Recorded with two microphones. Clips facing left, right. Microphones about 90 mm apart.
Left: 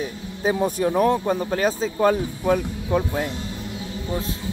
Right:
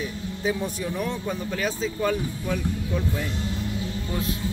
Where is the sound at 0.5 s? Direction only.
50° left (ahead or behind).